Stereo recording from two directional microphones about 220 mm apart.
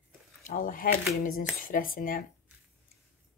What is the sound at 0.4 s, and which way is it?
Speech, 35° left (ahead or behind).